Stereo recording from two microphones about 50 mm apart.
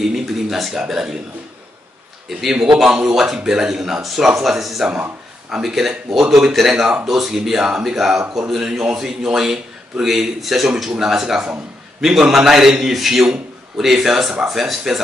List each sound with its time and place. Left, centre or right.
0.0 s a man's voice: centre
2.8 s a man's voice: centre
7.1 s a man's voice: centre